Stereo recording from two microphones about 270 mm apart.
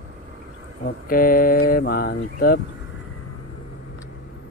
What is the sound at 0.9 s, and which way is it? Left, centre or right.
Speech, left.